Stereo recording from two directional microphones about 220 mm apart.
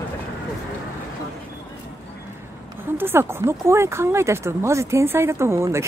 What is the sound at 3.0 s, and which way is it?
Speech, 10° right (ahead or behind).